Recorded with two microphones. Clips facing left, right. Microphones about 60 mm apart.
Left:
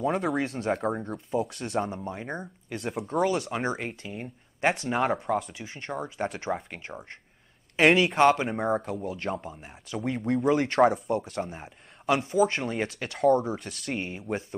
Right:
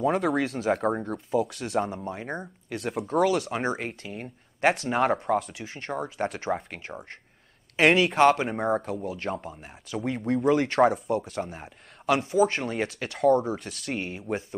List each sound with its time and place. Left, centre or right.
0.0 s speech: centre